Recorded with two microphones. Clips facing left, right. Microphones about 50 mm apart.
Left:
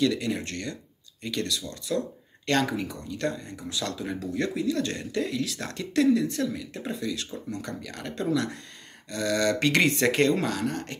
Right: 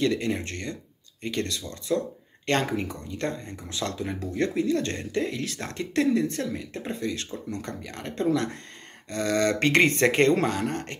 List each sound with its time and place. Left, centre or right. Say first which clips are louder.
0.0 s speech: even; right